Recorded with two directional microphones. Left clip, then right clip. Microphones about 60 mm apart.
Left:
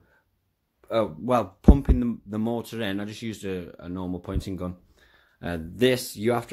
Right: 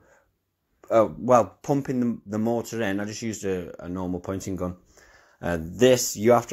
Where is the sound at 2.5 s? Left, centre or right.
Centre.